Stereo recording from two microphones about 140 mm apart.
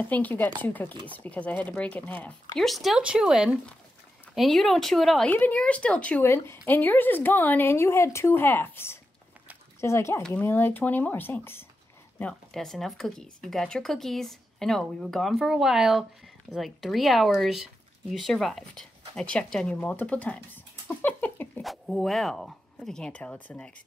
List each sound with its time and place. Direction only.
0.1 s a woman's voice: 10° left (ahead or behind)
5.3 s a woman's voice: 10° left (ahead or behind)
12.2 s speech: 5° left (ahead or behind)
21.6 s speech: centre (ahead or behind)